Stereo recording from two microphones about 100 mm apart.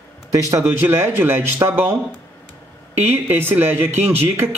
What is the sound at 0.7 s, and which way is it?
Speech, 25° right (ahead or behind).